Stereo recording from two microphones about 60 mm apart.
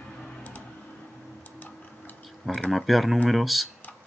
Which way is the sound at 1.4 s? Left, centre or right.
Left.